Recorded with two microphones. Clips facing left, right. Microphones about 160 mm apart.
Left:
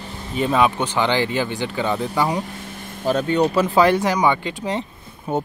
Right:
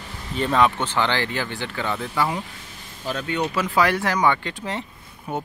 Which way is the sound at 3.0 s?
40° left (ahead or behind).